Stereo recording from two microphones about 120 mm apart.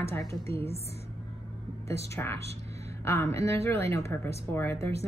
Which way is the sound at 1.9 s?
20° left (ahead or behind).